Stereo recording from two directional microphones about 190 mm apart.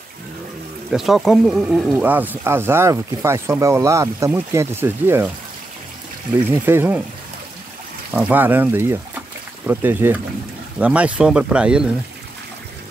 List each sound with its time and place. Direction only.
0.9 s speech: centre (ahead or behind)
6.6 s speech: 10° right (ahead or behind)
8.1 s speech: 10° right (ahead or behind)